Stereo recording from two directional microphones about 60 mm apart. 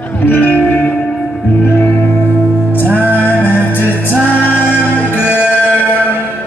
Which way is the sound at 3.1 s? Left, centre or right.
Left.